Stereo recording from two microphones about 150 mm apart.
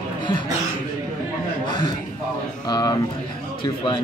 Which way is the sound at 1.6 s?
30° left (ahead or behind).